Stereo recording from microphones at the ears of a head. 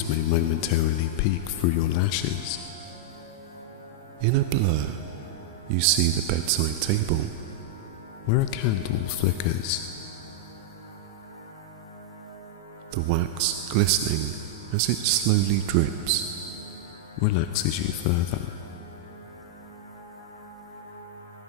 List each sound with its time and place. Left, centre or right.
0.0 s speech: left
4.2 s speech: right
8.3 s speech: left
12.9 s speech: right
17.1 s speech: left